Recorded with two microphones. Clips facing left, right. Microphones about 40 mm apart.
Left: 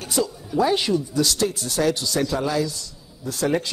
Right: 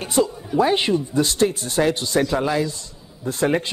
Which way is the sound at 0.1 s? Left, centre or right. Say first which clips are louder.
Right 4 dB; right.